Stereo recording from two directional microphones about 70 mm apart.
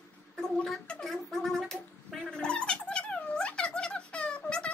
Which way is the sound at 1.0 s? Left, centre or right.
Centre.